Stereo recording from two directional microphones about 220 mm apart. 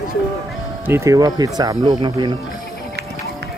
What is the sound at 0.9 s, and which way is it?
Speech, 15° right (ahead or behind).